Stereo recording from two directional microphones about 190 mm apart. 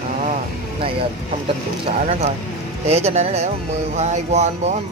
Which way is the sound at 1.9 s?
30° right (ahead or behind).